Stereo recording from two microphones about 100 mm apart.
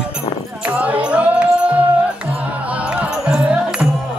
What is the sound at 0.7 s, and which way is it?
Music, 15° right (ahead or behind).